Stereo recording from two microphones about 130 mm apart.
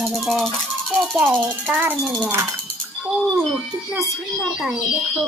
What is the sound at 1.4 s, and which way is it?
Speech, 15° right (ahead or behind).